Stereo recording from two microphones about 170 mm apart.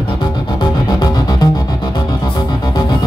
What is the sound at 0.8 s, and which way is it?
Music, 20° left (ahead or behind).